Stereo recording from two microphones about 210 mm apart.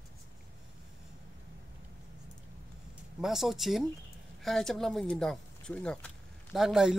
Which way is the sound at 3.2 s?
Centre (ahead or behind).